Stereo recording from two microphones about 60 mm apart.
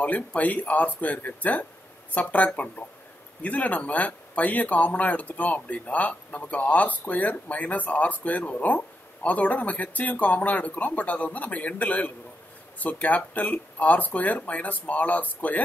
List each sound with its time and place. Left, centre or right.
0.0 s speech: left